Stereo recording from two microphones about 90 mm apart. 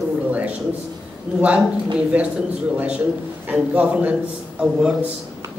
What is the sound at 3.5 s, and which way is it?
A man's voice, 15° right (ahead or behind).